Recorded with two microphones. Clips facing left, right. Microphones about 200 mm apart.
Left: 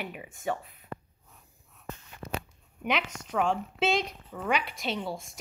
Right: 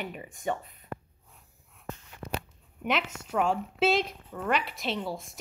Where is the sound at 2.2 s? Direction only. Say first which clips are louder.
Even; 10° left (ahead or behind).